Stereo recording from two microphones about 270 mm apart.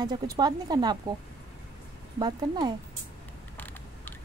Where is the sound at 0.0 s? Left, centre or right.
Centre.